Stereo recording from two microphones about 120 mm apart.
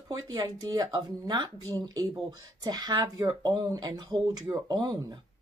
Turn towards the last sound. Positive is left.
turn(degrees=-35)  # may be behind; listen again after turning